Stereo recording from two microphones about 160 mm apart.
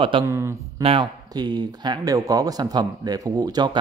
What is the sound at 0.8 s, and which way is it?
Speech, 30° right (ahead or behind).